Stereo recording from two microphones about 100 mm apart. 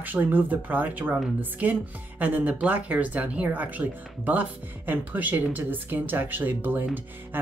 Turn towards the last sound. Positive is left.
turn(degrees=-20)  # may be behind; listen again after turning